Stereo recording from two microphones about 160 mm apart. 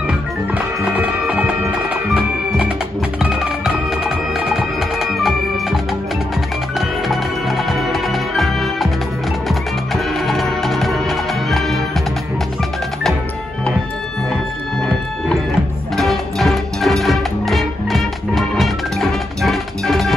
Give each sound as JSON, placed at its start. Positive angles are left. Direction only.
{"t": 0.6, "sound": "music", "side_deg": -10}
{"t": 7.1, "sound": "music", "side_deg": 0}
{"t": 16.0, "sound": "music", "side_deg": 0}